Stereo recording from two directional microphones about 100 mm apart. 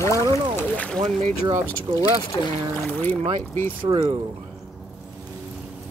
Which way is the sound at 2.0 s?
40° left (ahead or behind).